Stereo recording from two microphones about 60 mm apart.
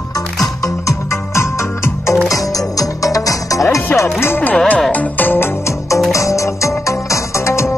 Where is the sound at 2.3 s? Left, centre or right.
Left.